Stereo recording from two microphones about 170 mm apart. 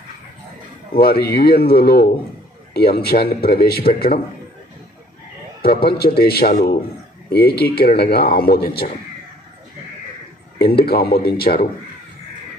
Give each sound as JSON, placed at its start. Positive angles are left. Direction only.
{"t": 0.9, "sound": "speech", "side_deg": 65}
{"t": 5.6, "sound": "speech", "side_deg": 65}
{"t": 10.6, "sound": "speech", "side_deg": 65}